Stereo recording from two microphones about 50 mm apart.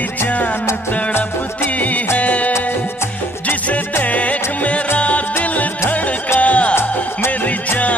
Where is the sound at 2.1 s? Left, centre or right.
Left.